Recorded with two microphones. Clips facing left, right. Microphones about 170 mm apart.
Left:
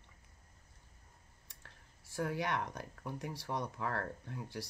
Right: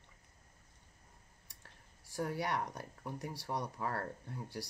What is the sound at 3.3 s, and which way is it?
Speech, 10° right (ahead or behind).